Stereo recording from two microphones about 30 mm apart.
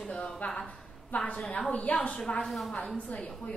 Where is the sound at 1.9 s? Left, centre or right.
Left.